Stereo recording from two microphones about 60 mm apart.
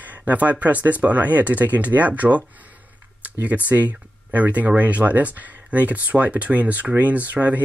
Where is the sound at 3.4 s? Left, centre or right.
Right.